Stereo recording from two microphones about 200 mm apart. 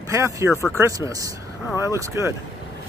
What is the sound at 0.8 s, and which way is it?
Speech, 15° right (ahead or behind).